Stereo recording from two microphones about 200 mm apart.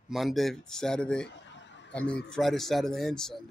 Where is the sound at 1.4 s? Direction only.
65° left (ahead or behind).